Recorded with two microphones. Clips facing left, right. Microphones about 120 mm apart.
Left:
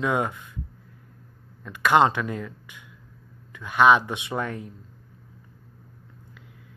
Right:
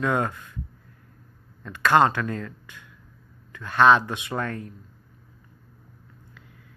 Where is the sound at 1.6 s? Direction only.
10° left (ahead or behind).